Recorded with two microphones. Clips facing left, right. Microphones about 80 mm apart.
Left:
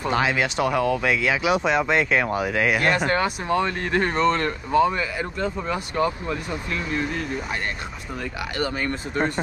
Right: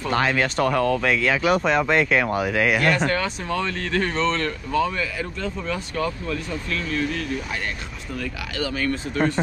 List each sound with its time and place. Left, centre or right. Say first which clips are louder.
0.1 s speech: right 2 dB; centre
8.7 s speech: right 1 dB; centre